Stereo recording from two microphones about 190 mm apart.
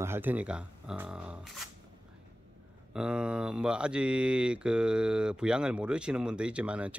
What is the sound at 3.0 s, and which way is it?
Speech, 5° right (ahead or behind).